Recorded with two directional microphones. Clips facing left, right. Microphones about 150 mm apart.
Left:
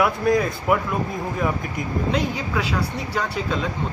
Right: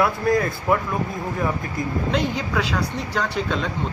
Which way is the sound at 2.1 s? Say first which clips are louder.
Right 3 dB; 5° left (ahead or behind).